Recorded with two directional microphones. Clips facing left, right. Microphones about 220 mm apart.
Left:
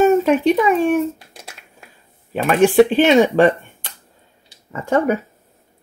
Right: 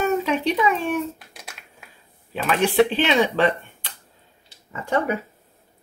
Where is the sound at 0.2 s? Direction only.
50° left (ahead or behind).